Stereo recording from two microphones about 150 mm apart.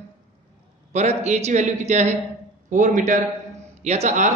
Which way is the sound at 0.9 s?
50° right (ahead or behind).